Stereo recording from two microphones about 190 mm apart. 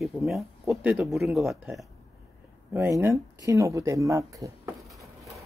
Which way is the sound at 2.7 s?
10° right (ahead or behind).